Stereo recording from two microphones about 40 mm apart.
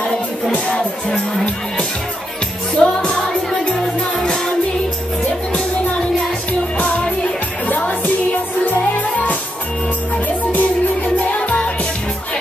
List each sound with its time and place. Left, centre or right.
0.7 s music: centre
2.7 s music: centre
6.8 s music: left
9.1 s music: left